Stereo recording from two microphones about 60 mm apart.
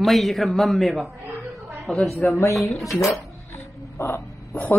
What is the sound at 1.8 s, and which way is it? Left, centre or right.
Speech, centre.